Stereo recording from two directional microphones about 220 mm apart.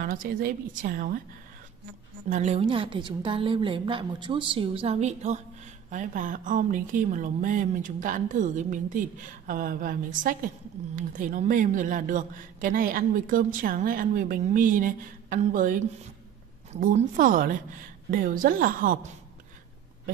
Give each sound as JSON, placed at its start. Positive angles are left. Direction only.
{"t": 0.0, "sound": "speech", "side_deg": -40}
{"t": 2.2, "sound": "a woman's voice", "side_deg": -35}